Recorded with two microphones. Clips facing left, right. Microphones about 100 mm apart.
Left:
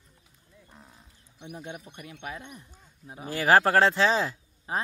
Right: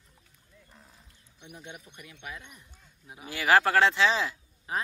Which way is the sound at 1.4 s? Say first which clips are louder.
Left 6 dB; 35° left (ahead or behind).